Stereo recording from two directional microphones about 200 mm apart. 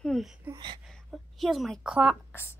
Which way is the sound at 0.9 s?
Centre (ahead or behind).